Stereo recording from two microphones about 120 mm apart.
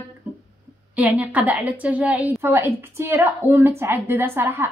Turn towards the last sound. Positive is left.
turn(degrees=-20)  # may be behind; listen again after turning